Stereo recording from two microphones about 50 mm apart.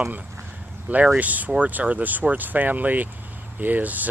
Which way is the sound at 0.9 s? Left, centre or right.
Right.